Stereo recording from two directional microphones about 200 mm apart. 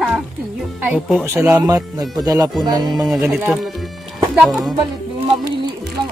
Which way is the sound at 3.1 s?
5° right (ahead or behind).